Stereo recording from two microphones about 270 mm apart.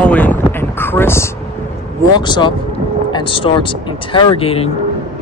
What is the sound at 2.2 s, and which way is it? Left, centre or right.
Speech, centre.